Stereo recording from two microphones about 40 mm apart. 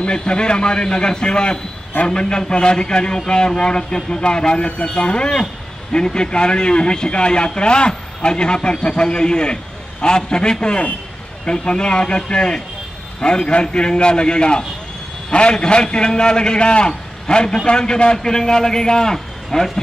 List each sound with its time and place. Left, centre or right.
0.0 s a man's voice: left; by 19.8 s centre